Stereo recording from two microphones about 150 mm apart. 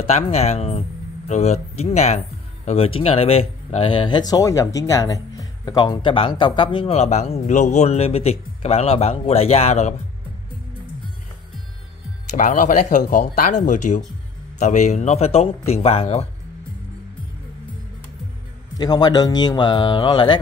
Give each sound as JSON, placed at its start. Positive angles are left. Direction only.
{"t": 0.0, "sound": "speech", "side_deg": 45}
{"t": 12.3, "sound": "speech", "side_deg": 55}
{"t": 18.8, "sound": "speech", "side_deg": 25}